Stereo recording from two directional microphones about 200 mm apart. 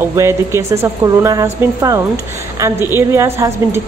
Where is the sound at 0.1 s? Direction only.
15° right (ahead or behind).